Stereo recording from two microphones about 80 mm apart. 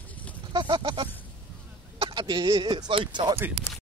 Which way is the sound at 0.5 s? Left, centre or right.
Right.